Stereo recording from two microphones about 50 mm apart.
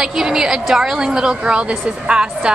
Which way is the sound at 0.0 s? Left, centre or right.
Centre.